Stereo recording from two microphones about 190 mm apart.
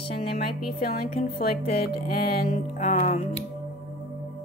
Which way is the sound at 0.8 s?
50° left (ahead or behind).